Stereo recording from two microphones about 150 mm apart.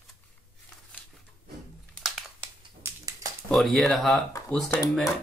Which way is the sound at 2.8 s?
25° right (ahead or behind).